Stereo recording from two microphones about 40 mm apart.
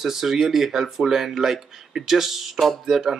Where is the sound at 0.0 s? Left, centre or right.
Centre.